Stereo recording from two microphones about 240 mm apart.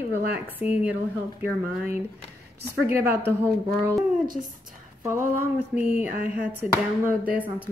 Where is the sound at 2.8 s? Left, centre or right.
Centre.